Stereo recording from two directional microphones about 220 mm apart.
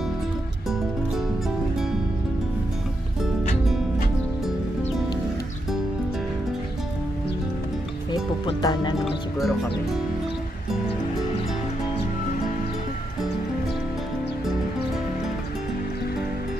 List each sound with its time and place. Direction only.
8.1 s music: 20° left (ahead or behind)
9.0 s speech: centre (ahead or behind)